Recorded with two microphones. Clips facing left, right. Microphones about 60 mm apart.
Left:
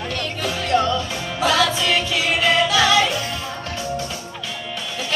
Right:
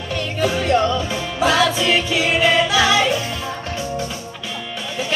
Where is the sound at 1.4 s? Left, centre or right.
Centre.